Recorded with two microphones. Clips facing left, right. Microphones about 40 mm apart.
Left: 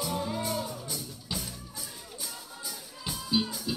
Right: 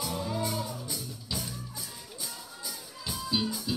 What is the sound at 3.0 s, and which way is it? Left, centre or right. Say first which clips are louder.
Music: left 1 dB; centre.